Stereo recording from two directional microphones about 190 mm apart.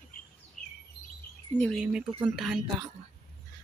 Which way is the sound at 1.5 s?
10° left (ahead or behind).